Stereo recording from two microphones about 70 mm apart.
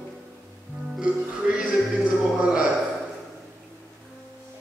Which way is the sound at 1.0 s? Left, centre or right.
Centre.